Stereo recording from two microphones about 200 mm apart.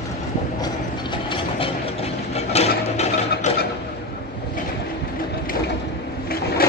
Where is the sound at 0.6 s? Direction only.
25° left (ahead or behind).